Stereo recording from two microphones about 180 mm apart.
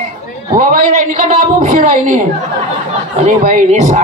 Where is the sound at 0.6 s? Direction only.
45° right (ahead or behind).